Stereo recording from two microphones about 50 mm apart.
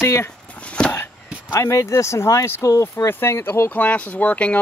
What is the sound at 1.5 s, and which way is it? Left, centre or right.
Speech, left.